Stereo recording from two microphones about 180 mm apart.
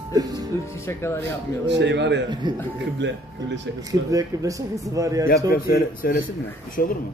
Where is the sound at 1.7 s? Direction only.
75° right (ahead or behind).